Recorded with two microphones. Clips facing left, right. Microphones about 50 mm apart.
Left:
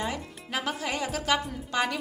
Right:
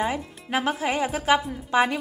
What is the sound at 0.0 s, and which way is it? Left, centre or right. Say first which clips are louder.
A woman's voice: right 6 dB; right.